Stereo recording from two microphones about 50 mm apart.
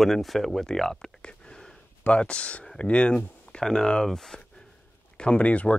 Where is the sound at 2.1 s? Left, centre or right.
Left.